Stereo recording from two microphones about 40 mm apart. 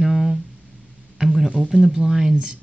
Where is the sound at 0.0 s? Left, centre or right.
Centre.